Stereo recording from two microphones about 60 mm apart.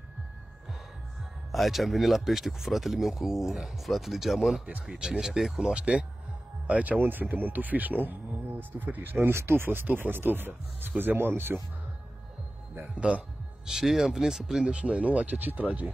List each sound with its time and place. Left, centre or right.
1.5 s speech: centre
4.8 s speech: centre
5.8 s speech: centre; by 11.5 s right
12.9 s speech: right
13.7 s speech: centre
14.6 s speech: centre